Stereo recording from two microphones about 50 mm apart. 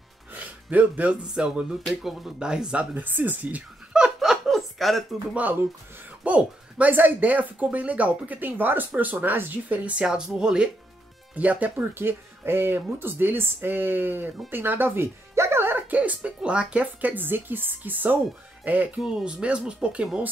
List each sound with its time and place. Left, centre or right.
0.3 s a sound: right
1.3 s speech: centre
2.8 s speech: right
3.9 s laughter: centre
4.5 s a sound: centre
6.2 s speech: right
10.0 s speech: centre
11.3 s speech: right
11.9 s speech: right
15.6 s music: right
16.0 s speech: right
16.8 s speech: right
19.2 s speech: right